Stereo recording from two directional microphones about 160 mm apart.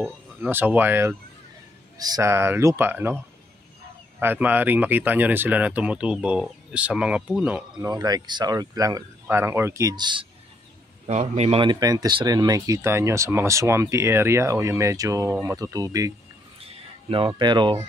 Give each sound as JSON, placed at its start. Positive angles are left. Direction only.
{"t": 0.0, "sound": "speech", "side_deg": -10}
{"t": 4.2, "sound": "speech", "side_deg": -10}
{"t": 7.8, "sound": "speech", "side_deg": -25}
{"t": 11.1, "sound": "a man's voice", "side_deg": -45}
{"t": 11.6, "sound": "speech", "side_deg": -25}
{"t": 17.4, "sound": "speech", "side_deg": -30}